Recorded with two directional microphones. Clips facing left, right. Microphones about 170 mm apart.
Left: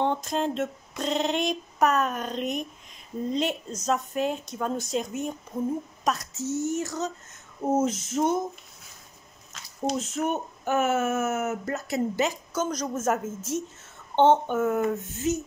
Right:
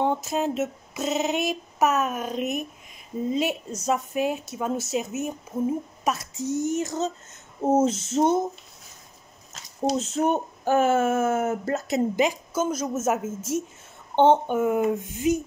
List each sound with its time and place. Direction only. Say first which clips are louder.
0.0 s a woman's voice: right 2 dB; 5° right (ahead or behind)
7.6 s a sound: right 4 dB; 25° right (ahead or behind)
9.8 s speech: right 4 dB; 30° right (ahead or behind)
12.2 s a woman's voice: right 3 dB; 10° right (ahead or behind)